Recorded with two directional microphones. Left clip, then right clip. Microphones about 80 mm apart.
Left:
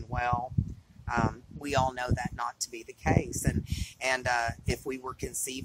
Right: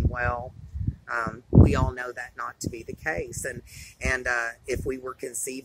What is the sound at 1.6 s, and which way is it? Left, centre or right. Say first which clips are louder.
Speech: even; left.